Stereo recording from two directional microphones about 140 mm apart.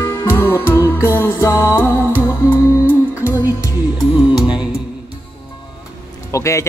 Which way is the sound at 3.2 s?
20° left (ahead or behind).